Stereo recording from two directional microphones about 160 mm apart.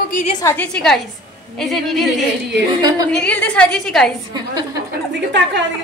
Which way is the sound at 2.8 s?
25° right (ahead or behind).